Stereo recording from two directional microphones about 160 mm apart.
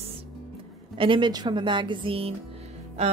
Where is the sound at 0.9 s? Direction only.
30° right (ahead or behind).